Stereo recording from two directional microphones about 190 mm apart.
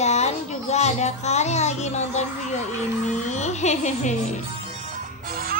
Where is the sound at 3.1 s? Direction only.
35° left (ahead or behind).